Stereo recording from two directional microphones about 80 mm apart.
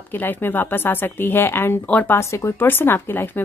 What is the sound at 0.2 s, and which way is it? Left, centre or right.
Speech, left.